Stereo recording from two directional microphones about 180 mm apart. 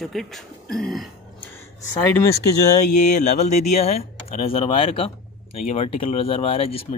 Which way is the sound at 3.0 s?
40° left (ahead or behind).